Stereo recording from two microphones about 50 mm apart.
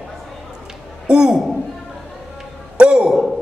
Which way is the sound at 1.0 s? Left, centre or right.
Centre.